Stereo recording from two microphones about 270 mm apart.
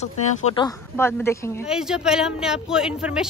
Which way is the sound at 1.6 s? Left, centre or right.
Centre.